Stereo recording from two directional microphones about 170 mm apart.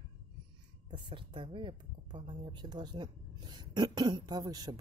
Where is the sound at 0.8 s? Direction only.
30° right (ahead or behind).